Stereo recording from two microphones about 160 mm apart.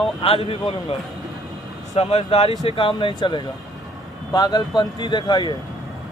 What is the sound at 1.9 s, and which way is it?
Speech, 40° left (ahead or behind).